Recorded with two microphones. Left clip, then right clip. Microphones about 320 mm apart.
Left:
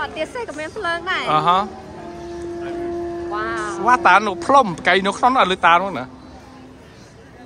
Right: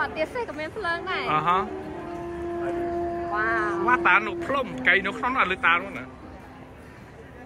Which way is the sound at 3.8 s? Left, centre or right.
Centre.